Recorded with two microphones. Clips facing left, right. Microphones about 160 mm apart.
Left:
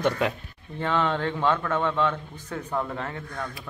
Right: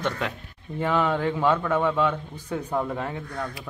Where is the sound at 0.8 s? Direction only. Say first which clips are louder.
Right 2 dB; 10° right (ahead or behind).